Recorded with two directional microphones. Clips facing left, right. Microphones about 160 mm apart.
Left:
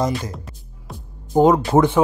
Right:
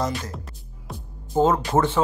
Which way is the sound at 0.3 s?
Centre (ahead or behind).